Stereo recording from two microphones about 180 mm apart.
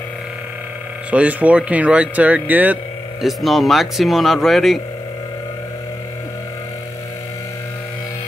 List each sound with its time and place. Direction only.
1.1 s speech: 5° right (ahead or behind)